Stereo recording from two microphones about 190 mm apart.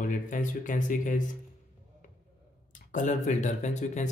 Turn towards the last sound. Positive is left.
turn(degrees=40)  # may be behind; listen again after turning